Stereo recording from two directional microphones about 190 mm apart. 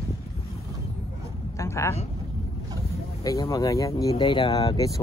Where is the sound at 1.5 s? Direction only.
15° left (ahead or behind).